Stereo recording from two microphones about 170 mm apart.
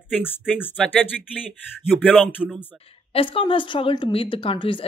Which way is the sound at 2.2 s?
5° right (ahead or behind).